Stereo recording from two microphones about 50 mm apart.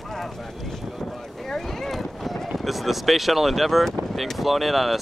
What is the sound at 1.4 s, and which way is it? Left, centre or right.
Boat, centre.